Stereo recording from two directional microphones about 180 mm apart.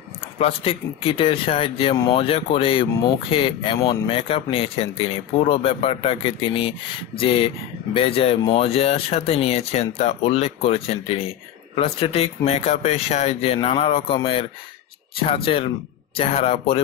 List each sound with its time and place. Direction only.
0.4 s speech: 30° left (ahead or behind)